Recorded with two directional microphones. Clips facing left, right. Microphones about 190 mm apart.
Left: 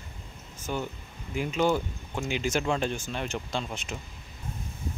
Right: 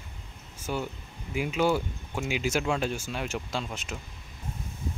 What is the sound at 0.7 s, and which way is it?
Speech, 5° right (ahead or behind).